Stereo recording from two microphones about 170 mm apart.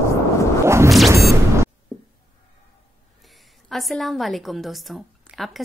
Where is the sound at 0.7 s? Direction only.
15° right (ahead or behind).